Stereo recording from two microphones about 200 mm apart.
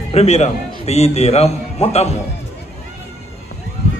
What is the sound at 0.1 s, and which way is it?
A man's voice, 30° left (ahead or behind).